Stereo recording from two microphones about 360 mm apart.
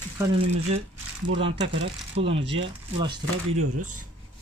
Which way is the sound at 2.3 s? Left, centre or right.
Centre.